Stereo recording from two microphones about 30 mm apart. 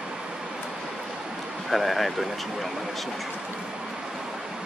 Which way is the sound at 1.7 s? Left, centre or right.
Centre.